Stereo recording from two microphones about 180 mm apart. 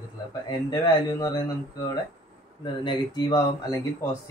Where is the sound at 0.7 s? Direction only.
20° left (ahead or behind).